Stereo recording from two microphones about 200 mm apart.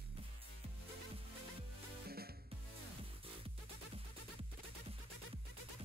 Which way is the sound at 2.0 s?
50° right (ahead or behind).